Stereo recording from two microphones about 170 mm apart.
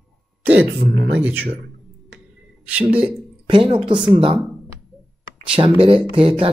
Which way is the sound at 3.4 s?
30° right (ahead or behind).